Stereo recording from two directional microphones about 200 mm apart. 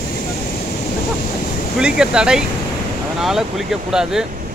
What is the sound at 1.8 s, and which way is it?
Speech, 5° right (ahead or behind).